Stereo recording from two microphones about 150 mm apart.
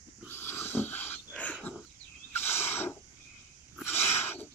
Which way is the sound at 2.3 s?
15° left (ahead or behind).